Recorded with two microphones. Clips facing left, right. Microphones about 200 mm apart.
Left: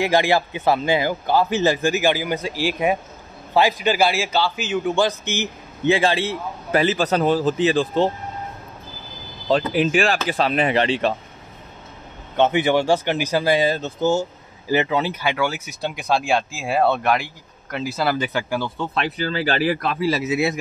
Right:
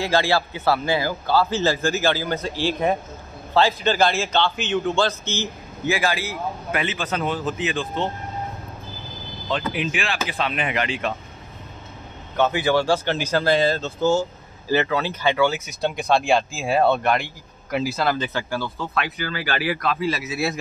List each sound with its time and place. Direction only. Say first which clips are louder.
0.0 s a man's voice: left 3 dB; 15° left (ahead or behind); by 8.1 s 40° left (ahead or behind)
9.5 s speech: left 7 dB; 35° left (ahead or behind)
12.4 s a man's voice: left 2 dB; 25° left (ahead or behind)
18.8 s speech: left 3 dB; 30° left (ahead or behind)
20.1 s a man's voice: left 4 dB; 25° left (ahead or behind)